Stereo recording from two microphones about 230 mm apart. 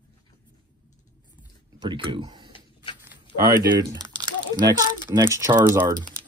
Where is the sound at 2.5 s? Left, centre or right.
Left.